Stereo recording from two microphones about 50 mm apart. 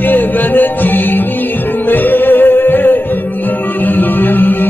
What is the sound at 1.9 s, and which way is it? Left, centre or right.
Music, left.